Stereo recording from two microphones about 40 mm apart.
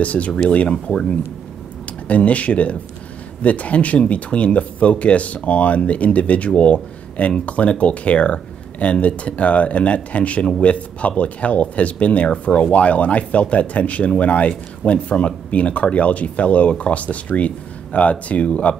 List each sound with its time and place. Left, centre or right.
0.0 s speech: left
2.0 s speech: left